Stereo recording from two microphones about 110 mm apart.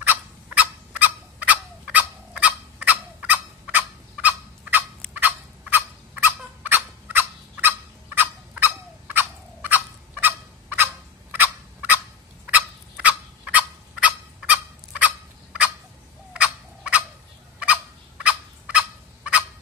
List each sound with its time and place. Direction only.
0.0 s turkey: 15° right (ahead or behind)
12.5 s turkey: 15° right (ahead or behind)
16.3 s fowl: 10° right (ahead or behind)